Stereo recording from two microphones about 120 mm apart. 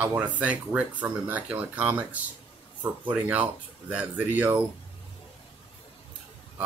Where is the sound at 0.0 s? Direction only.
15° right (ahead or behind).